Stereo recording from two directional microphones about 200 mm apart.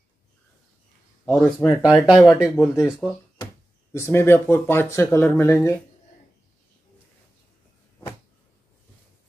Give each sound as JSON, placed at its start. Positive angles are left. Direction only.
{"t": 1.2, "sound": "speech", "side_deg": 10}
{"t": 1.9, "sound": "speech", "side_deg": -5}
{"t": 2.2, "sound": "speech", "side_deg": 15}
{"t": 3.0, "sound": "speech", "side_deg": 0}
{"t": 3.9, "sound": "speech", "side_deg": 15}